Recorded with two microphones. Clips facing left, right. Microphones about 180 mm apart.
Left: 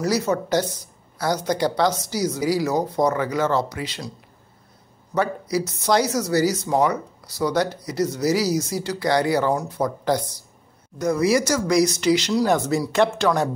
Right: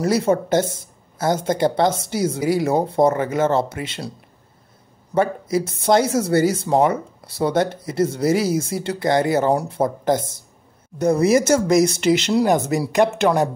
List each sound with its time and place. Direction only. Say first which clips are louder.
0.0 s speech: right 4 dB; 25° right (ahead or behind)
5.1 s speech: right 3 dB; 25° right (ahead or behind)